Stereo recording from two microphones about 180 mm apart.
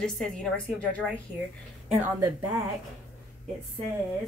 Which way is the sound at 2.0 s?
10° right (ahead or behind).